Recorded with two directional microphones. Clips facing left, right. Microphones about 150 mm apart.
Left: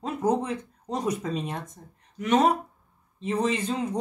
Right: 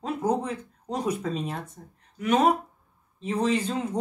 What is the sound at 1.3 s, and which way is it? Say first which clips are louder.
Speech: even; centre (ahead or behind).